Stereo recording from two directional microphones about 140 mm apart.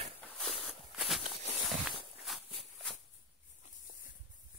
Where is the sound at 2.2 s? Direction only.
Centre (ahead or behind).